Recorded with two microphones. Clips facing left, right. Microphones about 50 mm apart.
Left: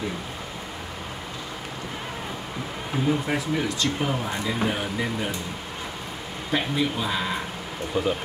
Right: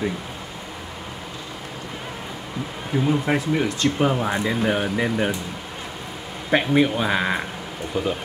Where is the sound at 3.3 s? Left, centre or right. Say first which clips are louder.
Right 4 dB; right.